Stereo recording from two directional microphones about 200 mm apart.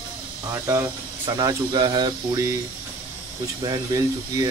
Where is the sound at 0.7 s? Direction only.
15° right (ahead or behind).